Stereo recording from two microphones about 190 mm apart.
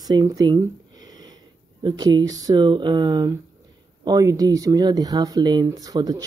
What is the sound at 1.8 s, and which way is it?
Speech, 20° right (ahead or behind).